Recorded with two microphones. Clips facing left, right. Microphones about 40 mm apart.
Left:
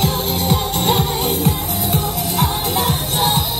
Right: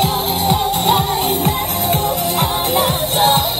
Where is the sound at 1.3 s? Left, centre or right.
Right.